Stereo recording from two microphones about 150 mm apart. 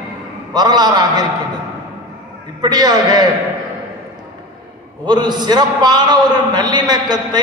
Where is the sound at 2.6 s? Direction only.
25° right (ahead or behind).